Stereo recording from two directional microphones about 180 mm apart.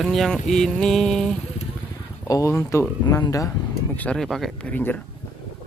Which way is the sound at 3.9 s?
5° left (ahead or behind).